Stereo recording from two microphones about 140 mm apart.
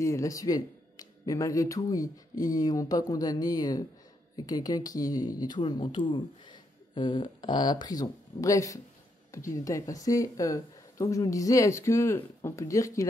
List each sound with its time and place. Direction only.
0.0 s speech: 20° left (ahead or behind)